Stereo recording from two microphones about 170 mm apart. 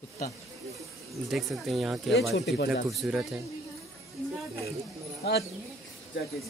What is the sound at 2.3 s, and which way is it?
Speech, 80° left.